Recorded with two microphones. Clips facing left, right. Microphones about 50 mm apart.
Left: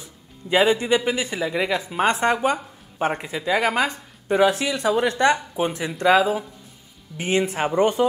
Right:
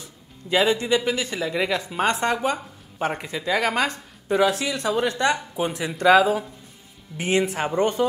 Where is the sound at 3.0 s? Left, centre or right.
Centre.